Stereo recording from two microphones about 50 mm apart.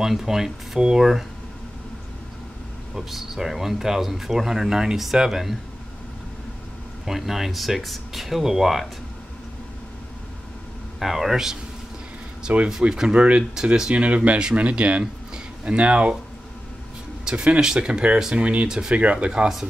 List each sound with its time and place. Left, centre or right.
0.0 s speech: centre
2.9 s speech: centre
7.1 s speech: centre
11.0 s speech: centre
12.5 s speech: right
12.9 s speech: centre
17.2 s a sound: centre
17.6 s speech: centre
18.9 s speech: right